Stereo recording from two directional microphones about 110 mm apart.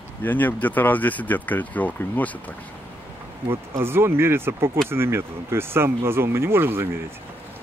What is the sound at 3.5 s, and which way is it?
Speech, 20° right (ahead or behind).